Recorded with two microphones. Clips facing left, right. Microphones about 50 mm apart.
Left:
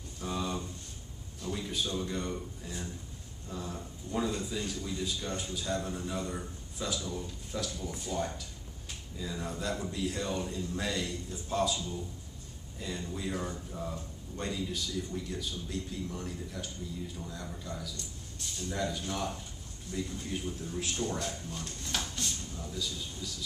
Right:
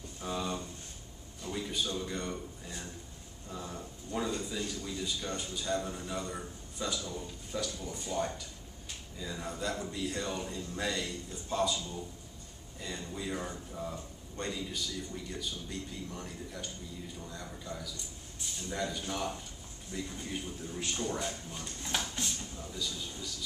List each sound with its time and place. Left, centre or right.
0.2 s a sound: centre
1.4 s a man's voice: centre
22.8 s a man's voice: centre